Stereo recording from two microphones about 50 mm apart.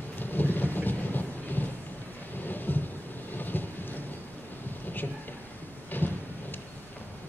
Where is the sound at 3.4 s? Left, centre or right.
Left.